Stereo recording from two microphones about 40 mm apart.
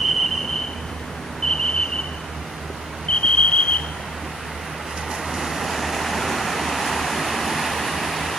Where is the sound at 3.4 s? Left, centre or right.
Left.